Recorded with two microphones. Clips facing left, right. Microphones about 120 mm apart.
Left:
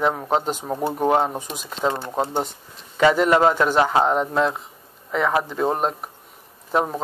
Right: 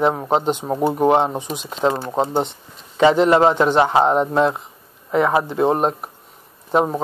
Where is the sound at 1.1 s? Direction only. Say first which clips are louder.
Right 3 dB; 25° right (ahead or behind).